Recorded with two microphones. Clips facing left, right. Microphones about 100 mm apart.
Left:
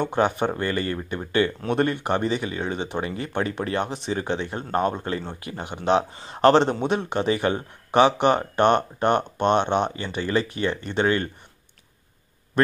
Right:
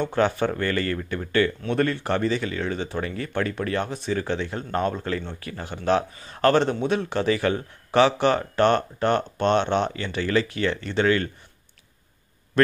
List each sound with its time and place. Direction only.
0.0 s speech: 20° left (ahead or behind)